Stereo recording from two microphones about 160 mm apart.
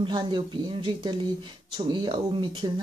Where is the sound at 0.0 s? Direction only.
30° right (ahead or behind).